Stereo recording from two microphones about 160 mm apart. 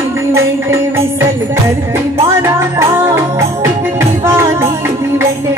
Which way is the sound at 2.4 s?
15° right (ahead or behind).